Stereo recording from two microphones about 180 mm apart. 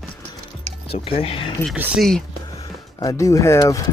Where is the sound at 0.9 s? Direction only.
35° left (ahead or behind).